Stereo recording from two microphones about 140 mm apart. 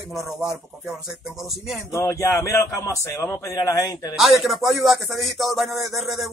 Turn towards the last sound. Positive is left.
turn(degrees=0)  # may be behind; listen again after turning